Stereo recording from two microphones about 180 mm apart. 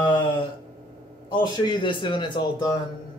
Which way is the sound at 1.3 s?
25° left (ahead or behind).